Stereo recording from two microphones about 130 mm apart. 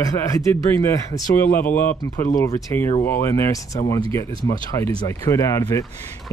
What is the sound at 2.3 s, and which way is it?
Speech, 25° left (ahead or behind).